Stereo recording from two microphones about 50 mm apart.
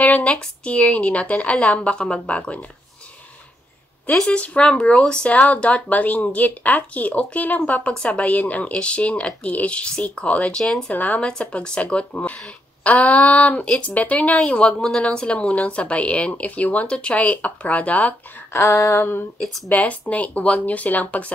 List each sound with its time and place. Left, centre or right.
0.0 s speech: left
4.3 s speech: left
10.6 s speech: centre
10.9 s speech: left
11.2 s speech: centre
18.5 s a sound: left
19.7 s speech: left